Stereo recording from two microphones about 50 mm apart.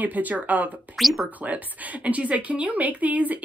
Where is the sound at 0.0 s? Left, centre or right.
Right.